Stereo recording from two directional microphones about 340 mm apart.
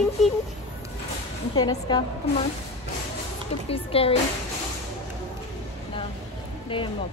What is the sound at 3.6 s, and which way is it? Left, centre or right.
Speech, centre.